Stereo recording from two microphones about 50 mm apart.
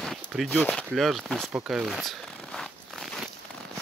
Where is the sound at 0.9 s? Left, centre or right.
Centre.